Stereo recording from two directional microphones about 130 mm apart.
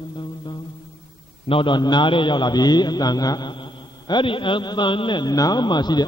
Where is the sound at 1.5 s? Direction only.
40° left (ahead or behind).